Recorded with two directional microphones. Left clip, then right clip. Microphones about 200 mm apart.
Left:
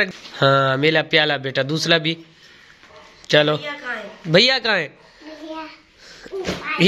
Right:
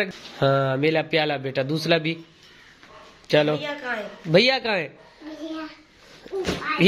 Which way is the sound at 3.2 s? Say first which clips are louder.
Left 4 dB; centre (ahead or behind).